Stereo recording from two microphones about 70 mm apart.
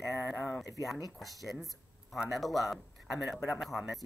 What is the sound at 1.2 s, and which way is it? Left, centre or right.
Speech, centre.